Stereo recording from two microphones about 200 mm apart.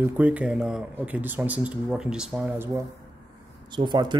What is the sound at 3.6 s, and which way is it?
Speech, 25° right (ahead or behind).